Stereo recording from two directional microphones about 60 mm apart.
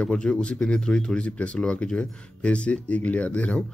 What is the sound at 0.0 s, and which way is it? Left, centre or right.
Speech, centre.